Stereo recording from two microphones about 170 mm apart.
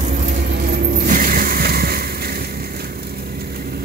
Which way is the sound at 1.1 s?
55° right (ahead or behind).